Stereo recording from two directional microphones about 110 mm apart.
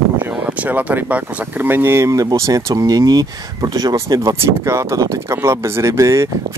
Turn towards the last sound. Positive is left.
turn(degrees=-25)  # may be behind; listen again after turning